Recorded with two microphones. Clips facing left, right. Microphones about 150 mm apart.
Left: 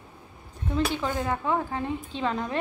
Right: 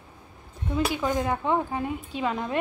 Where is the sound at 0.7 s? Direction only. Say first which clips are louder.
Right 2 dB; 10° right (ahead or behind).